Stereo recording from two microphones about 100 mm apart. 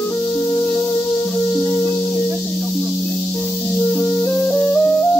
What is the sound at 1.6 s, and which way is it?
Music, 40° left (ahead or behind).